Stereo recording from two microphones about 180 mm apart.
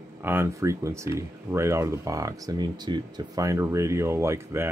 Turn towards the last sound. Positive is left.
turn(degrees=-15)  # may be behind; listen again after turning